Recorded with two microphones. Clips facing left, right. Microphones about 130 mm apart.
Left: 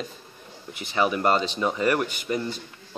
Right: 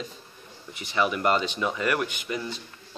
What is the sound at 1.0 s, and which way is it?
A man's voice, 35° left (ahead or behind).